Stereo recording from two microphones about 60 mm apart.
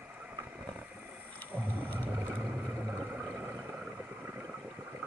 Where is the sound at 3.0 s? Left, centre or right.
Centre.